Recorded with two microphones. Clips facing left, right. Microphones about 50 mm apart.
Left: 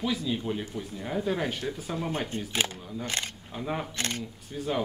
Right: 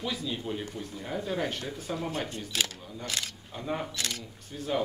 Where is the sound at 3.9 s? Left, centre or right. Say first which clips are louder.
Left 3 dB; left.